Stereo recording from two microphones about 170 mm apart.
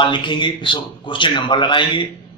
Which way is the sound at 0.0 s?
30° left (ahead or behind).